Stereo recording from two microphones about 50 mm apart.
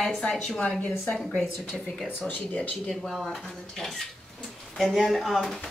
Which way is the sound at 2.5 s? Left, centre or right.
Left.